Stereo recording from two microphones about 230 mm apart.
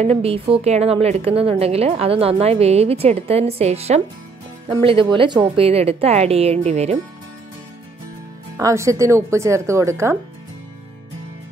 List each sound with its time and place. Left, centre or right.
0.0 s a woman's voice: right
8.5 s speech: centre